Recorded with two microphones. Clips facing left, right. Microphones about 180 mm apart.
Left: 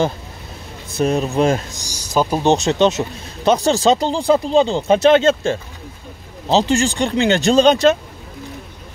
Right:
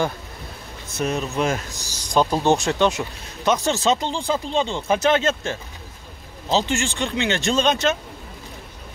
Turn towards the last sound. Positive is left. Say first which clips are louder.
# left 8 dB
turn(degrees=35)  # may be behind; listen again after turning